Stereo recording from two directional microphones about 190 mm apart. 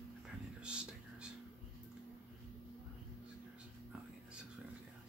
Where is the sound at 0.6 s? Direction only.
5° right (ahead or behind).